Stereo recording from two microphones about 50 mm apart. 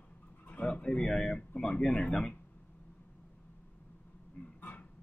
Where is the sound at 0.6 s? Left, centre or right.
Left.